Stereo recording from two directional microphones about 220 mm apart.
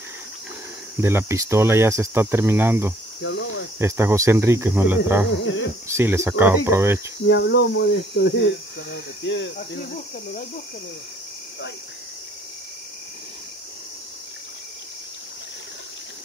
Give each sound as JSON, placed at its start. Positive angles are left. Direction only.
{"t": 1.0, "sound": "cricket", "side_deg": -10}
{"t": 3.2, "sound": "cricket", "side_deg": 55}
{"t": 3.8, "sound": "cricket", "side_deg": -10}
{"t": 5.4, "sound": "speech", "side_deg": 60}
{"t": 5.9, "sound": "cricket", "side_deg": -10}
{"t": 7.2, "sound": "speech", "side_deg": 55}